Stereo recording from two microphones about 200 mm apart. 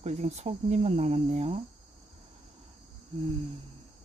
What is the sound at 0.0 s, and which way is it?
Speech, 35° right (ahead or behind).